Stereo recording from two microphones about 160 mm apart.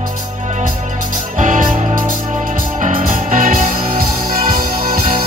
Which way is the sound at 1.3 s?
55° right (ahead or behind).